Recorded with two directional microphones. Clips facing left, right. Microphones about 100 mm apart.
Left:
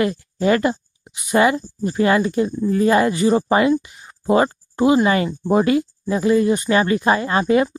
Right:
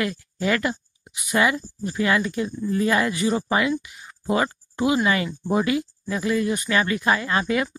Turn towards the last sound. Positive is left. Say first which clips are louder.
# left 6 dB
turn(degrees=30)  # may be behind; listen again after turning